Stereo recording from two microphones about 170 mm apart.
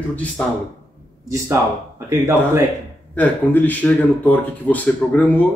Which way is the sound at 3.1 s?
10° left (ahead or behind).